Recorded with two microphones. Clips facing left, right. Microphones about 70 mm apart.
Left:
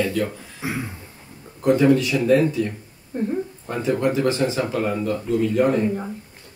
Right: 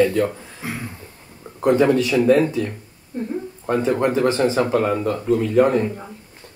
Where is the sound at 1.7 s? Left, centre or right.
Right.